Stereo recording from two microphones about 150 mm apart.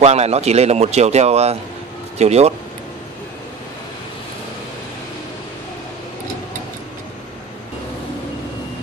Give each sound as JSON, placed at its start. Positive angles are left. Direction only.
{"t": 0.0, "sound": "a man's voice", "side_deg": -45}